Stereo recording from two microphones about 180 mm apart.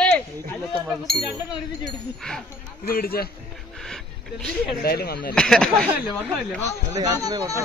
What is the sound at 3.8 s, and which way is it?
Speech, centre (ahead or behind).